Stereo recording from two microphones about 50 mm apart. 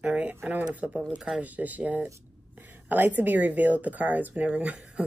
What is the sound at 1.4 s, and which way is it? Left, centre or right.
Speech, right.